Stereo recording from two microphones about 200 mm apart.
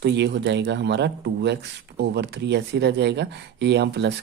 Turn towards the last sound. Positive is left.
turn(degrees=-60)  # may be behind; listen again after turning